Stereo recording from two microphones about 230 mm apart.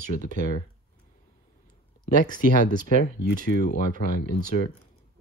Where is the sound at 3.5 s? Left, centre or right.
Left.